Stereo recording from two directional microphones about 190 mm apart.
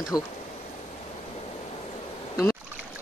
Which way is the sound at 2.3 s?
20° left (ahead or behind).